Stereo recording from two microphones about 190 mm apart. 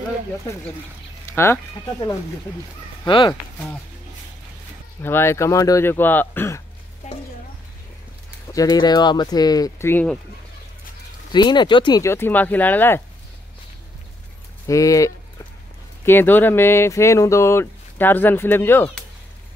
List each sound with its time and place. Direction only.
1.3 s speech: 15° left (ahead or behind)
3.1 s speech: 25° left (ahead or behind)
5.0 s speech: 10° left (ahead or behind)
8.5 s speech: 20° left (ahead or behind)
11.3 s speech: 25° left (ahead or behind)
14.7 s speech: 15° left (ahead or behind)